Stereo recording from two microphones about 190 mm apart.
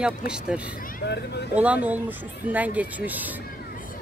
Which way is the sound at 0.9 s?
60° left (ahead or behind).